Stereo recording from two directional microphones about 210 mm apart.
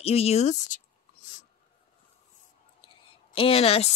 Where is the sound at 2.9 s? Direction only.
25° left (ahead or behind).